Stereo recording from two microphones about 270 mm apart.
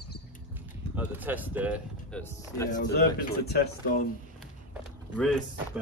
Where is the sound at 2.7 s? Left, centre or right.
Left.